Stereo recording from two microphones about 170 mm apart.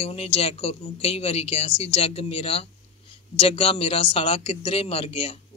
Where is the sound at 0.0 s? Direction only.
35° left (ahead or behind).